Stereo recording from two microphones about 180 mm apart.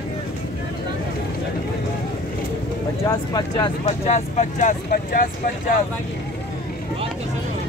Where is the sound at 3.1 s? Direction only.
20° left (ahead or behind).